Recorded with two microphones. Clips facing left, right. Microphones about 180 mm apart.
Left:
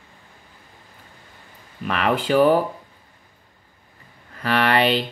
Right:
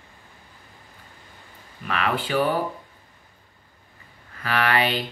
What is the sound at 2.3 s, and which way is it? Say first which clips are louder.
Speech: left 8 dB; 40° left (ahead or behind).